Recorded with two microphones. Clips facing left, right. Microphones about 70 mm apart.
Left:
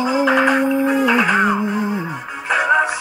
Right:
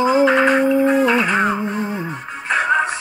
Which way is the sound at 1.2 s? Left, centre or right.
Centre.